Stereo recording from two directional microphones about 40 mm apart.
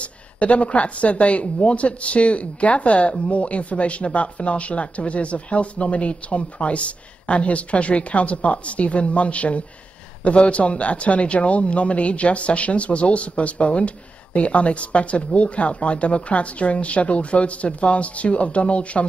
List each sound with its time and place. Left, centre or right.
0.0 s a woman's voice: left